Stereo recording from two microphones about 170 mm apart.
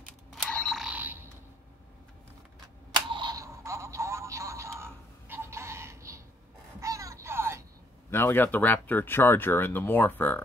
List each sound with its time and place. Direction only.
0.3 s creak: 5° left (ahead or behind)
3.1 s a sound: 25° right (ahead or behind)
8.1 s speech: 15° left (ahead or behind)